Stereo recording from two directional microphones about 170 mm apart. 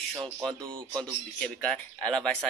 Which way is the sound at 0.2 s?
Centre (ahead or behind).